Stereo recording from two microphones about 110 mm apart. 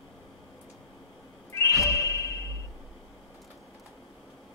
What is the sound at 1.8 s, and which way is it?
Music, 25° left (ahead or behind).